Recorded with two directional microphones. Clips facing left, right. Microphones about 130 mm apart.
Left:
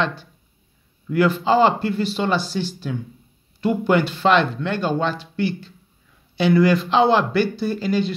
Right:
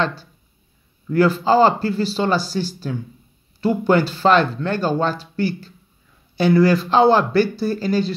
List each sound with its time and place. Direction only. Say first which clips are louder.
0.0 s speech: right 1 dB; 35° right (ahead or behind)